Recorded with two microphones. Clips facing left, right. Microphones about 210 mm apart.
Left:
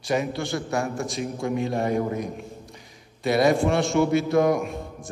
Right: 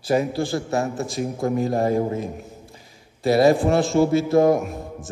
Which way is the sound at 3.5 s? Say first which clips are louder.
Right 3 dB; centre (ahead or behind).